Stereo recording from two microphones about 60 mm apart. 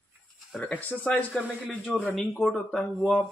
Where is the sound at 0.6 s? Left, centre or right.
Left.